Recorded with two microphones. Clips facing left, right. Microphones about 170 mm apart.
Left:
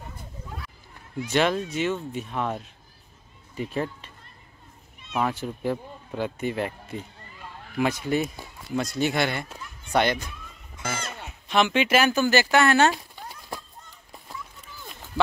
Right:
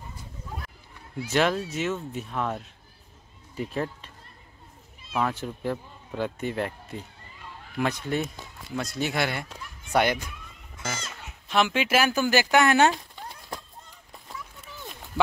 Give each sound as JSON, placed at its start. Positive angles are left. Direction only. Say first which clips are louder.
{"t": 1.3, "sound": "speech", "louder": "left 1 dB", "side_deg": 0}
{"t": 5.1, "sound": "speech", "louder": "left 1 dB", "side_deg": 5}
{"t": 10.9, "sound": "speech", "louder": "left 3 dB", "side_deg": 55}
{"t": 11.4, "sound": "speech", "louder": "left 2 dB", "side_deg": -5}